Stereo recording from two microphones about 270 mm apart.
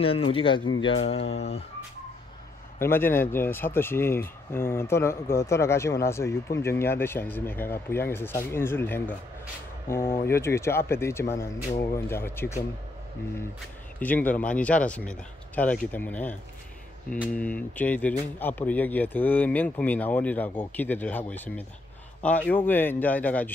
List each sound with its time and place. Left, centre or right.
0.3 s speech: centre
2.8 s speech: centre
13.9 s speech: centre